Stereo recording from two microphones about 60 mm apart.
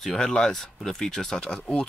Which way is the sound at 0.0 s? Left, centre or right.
Centre.